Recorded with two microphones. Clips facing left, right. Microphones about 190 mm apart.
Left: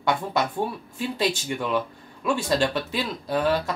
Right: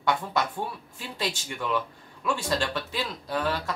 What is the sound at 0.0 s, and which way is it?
Speech, 15° left (ahead or behind).